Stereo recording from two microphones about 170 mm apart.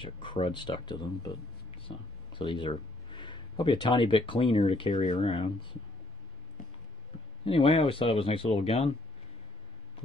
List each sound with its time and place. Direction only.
0.0 s speech: 30° left (ahead or behind)
7.4 s speech: 35° left (ahead or behind)